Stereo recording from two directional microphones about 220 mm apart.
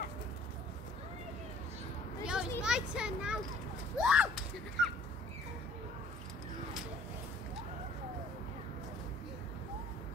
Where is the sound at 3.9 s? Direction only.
5° right (ahead or behind).